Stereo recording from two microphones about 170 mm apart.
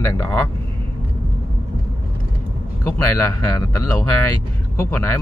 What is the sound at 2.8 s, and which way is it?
Speech, 15° left (ahead or behind).